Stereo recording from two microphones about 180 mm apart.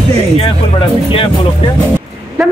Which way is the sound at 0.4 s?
30° left (ahead or behind).